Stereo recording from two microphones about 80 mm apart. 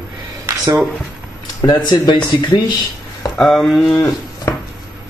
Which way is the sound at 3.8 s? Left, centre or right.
Left.